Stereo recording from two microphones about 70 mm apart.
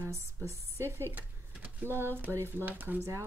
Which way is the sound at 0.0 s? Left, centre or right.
Right.